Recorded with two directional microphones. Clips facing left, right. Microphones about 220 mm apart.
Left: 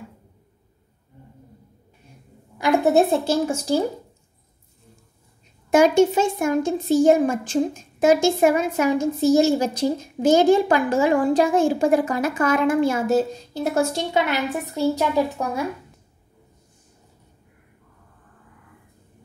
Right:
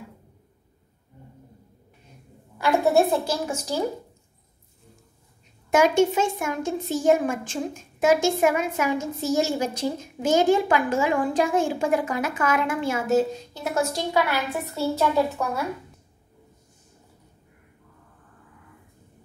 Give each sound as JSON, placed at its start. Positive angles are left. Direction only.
{"t": 2.6, "sound": "a woman's voice", "side_deg": 20}
{"t": 5.8, "sound": "a woman's voice", "side_deg": 35}